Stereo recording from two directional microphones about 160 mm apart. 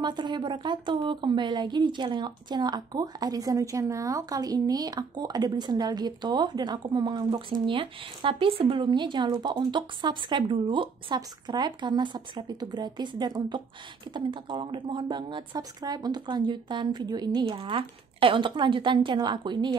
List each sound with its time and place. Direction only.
0.0 s speech: 30° right (ahead or behind)